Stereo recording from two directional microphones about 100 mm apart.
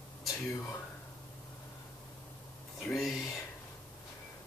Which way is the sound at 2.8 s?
5° left (ahead or behind).